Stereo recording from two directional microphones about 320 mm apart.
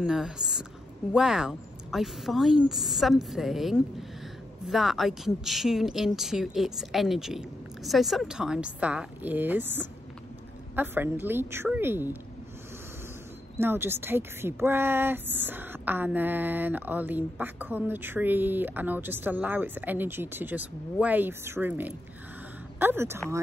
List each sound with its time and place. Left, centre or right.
0.0 s a woman's voice: centre
13.6 s a woman's voice: centre